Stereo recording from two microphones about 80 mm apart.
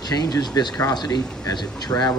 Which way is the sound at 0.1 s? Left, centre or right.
Left.